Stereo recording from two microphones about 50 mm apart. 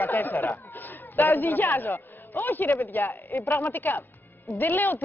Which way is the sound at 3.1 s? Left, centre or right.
Left.